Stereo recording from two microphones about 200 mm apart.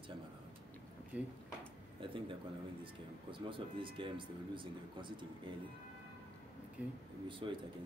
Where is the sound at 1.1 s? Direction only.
5° right (ahead or behind).